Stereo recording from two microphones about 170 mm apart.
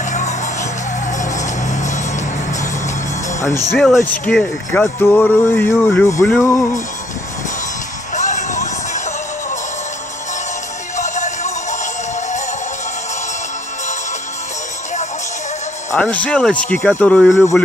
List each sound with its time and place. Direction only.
1.1 s music: 45° left (ahead or behind)
3.7 s speech: 5° left (ahead or behind)
8.1 s music: 45° left (ahead or behind)
11.0 s music: 45° left (ahead or behind)
15.9 s speech: 10° left (ahead or behind)